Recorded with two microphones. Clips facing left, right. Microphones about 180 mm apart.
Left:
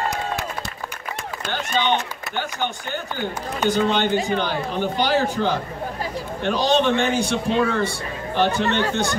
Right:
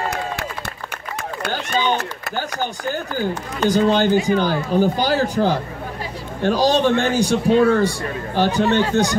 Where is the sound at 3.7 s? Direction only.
35° right (ahead or behind).